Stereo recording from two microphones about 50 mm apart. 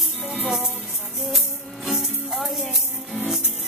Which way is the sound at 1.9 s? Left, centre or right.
Centre.